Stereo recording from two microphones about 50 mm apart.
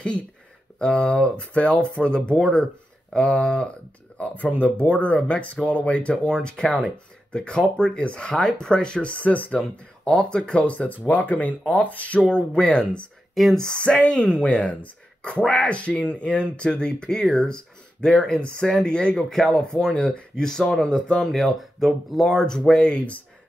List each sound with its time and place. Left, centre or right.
0.7 s speech: left
10.0 s speech: centre
13.3 s speech: centre
13.7 s speech: left
15.4 s speech: centre
15.7 s speech: left
21.3 s speech: centre
22.4 s speech: centre